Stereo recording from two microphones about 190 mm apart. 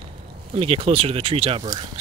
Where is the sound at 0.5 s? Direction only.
30° right (ahead or behind).